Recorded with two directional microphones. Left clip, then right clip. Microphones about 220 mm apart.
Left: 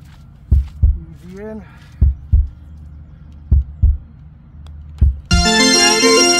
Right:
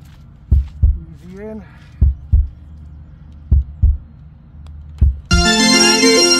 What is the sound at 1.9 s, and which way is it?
Heart sounds, centre (ahead or behind).